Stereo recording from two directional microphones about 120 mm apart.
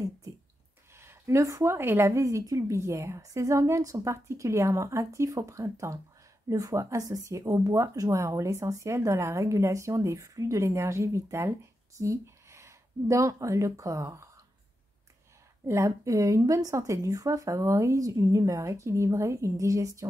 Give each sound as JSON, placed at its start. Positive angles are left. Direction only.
{"t": 0.9, "sound": "speech", "side_deg": -20}
{"t": 15.6, "sound": "speech", "side_deg": -25}